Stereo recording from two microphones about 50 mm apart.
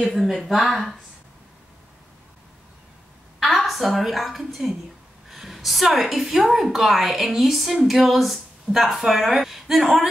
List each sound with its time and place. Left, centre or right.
0.0 s a woman's voice: centre
3.3 s a woman's voice: centre